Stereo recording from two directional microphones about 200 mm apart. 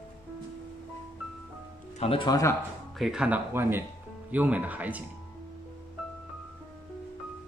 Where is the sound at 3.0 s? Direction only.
5° right (ahead or behind).